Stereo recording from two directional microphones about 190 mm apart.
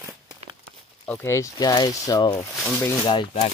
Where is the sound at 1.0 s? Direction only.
10° left (ahead or behind).